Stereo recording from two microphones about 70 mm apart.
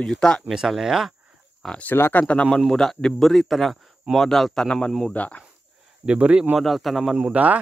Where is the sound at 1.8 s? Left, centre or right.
Left.